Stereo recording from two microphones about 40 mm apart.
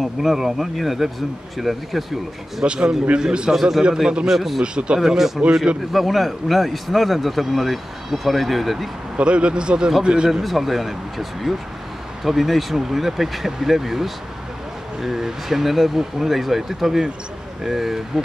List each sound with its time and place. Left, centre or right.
0.0 s speech: centre
2.6 s speech: right
3.5 s speech: centre
4.6 s speech: centre
9.1 s speech: right
10.4 s speech: centre